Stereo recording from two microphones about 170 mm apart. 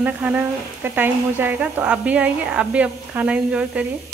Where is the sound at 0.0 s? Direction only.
10° right (ahead or behind).